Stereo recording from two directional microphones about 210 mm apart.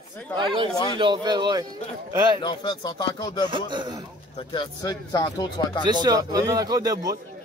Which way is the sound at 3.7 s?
20° right (ahead or behind).